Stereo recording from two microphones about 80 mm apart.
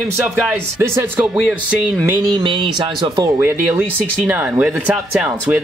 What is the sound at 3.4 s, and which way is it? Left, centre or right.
Speech, right.